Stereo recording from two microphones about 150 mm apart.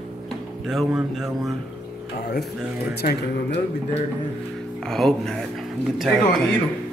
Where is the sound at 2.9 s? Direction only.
90° left.